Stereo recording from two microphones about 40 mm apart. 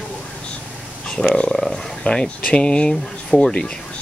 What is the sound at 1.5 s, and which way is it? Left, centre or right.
Speech, centre.